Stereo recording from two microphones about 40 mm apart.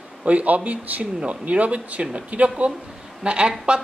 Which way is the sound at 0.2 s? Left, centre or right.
Right.